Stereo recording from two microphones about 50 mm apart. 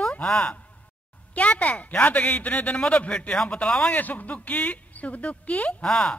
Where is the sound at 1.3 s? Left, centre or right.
Left.